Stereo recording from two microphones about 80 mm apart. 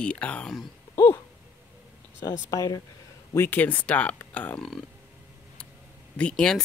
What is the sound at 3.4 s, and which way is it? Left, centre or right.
Speech, left.